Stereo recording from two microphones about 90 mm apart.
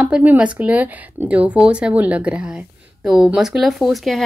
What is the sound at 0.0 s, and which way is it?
A woman's voice, 15° right (ahead or behind).